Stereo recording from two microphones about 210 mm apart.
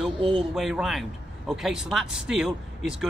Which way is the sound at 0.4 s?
Centre (ahead or behind).